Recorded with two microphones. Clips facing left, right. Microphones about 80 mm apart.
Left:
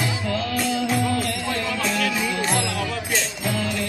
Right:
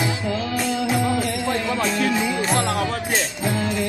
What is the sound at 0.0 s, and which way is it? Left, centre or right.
Music, centre.